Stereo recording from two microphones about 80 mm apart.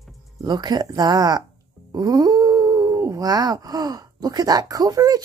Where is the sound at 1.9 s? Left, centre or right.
Right.